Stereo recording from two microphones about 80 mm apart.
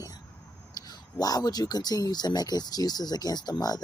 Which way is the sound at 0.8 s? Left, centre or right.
Left.